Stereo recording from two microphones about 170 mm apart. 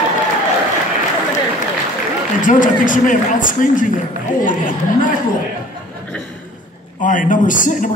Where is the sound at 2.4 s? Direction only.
50° left (ahead or behind).